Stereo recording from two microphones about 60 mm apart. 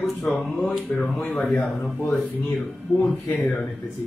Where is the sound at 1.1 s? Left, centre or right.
Centre.